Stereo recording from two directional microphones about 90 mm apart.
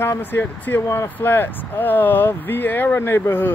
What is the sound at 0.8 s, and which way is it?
Speech, 35° left (ahead or behind).